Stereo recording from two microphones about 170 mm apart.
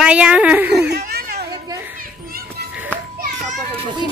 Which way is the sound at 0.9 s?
70° right (ahead or behind).